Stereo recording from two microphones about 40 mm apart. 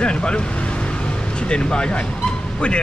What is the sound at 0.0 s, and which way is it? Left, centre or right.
Vehicle, left.